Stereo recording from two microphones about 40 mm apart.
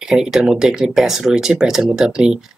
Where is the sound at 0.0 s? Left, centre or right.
Centre.